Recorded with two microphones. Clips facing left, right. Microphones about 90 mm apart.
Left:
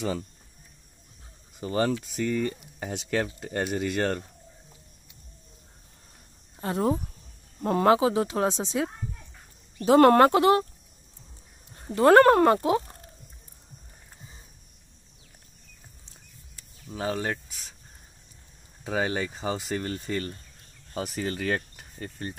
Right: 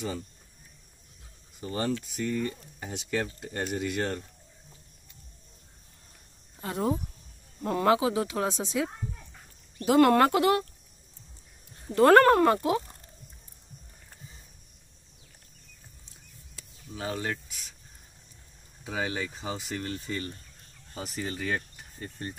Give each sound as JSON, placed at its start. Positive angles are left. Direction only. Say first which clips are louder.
{"t": 1.6, "sound": "speech", "louder": "left 5 dB", "side_deg": 90}
{"t": 2.1, "sound": "speech", "louder": "left 3 dB", "side_deg": 80}
{"t": 6.6, "sound": "speech", "louder": "left 3 dB", "side_deg": 40}
{"t": 9.9, "sound": "speech", "louder": "left 4 dB", "side_deg": 40}
{"t": 12.1, "sound": "speech", "louder": "left 3 dB", "side_deg": 25}
{"t": 16.9, "sound": "speech", "louder": "left 4 dB", "side_deg": 35}
{"t": 18.9, "sound": "speech", "louder": "left 4 dB", "side_deg": 55}